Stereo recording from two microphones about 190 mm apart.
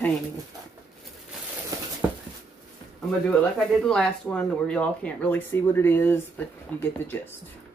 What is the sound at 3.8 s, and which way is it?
Speech, 5° left (ahead or behind).